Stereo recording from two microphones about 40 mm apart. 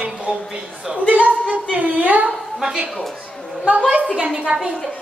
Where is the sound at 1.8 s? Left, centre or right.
Right.